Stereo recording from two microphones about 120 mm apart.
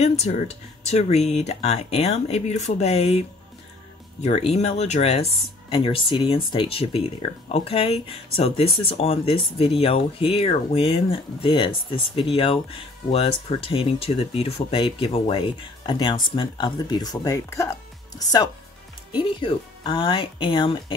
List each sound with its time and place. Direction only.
0.0 s speech: 65° left (ahead or behind)
4.2 s speech: 65° left (ahead or behind); by 18.5 s 30° left (ahead or behind)
19.1 s speech: 40° left (ahead or behind)